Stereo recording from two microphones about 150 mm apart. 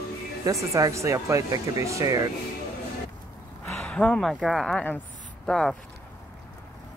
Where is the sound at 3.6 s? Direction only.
5° left (ahead or behind).